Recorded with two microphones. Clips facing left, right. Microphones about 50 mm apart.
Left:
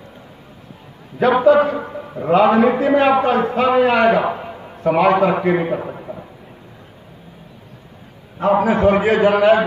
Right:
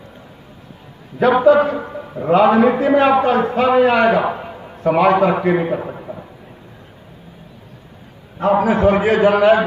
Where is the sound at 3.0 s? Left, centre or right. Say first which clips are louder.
Right 1 dB; centre.